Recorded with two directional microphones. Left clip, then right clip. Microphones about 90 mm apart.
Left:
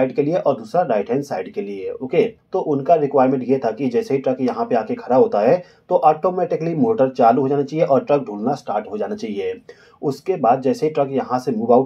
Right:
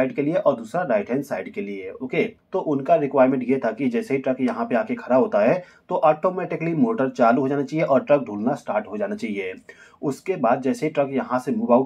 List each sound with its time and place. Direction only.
0.0 s speech: centre (ahead or behind)
2.0 s speech: centre (ahead or behind)
2.5 s speech: 15° right (ahead or behind)